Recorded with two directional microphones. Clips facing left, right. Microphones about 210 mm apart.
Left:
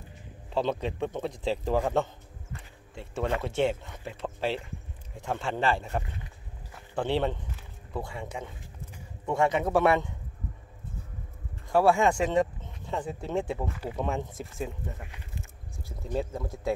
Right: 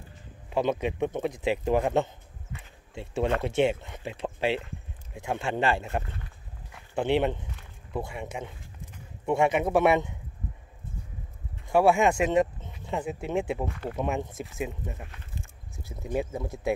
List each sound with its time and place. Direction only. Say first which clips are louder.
0.5 s speech: right 2 dB; 15° right (ahead or behind)
11.7 s speech: right 1 dB; 20° right (ahead or behind)
13.7 s speech: right 1 dB; 5° left (ahead or behind)
13.9 s speech: right 2 dB; 15° right (ahead or behind)
15.8 s speech: right 2 dB; 15° right (ahead or behind)